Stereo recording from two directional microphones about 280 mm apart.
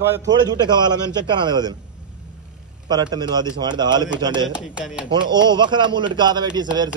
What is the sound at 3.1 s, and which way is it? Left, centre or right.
Speech, centre.